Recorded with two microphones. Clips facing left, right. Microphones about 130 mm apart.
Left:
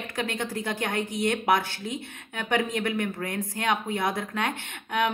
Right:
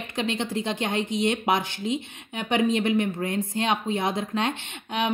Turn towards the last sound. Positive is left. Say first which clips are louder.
# left 1 dB
turn(degrees=-25)  # may be behind; listen again after turning